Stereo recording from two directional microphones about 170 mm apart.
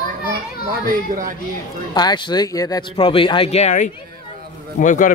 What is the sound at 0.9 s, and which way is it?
Speech, 55° right (ahead or behind).